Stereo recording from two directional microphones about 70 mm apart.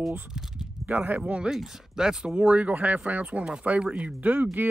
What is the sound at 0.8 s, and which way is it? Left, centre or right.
Speech, right.